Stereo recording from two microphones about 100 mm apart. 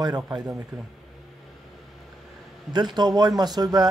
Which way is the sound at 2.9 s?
45° right (ahead or behind).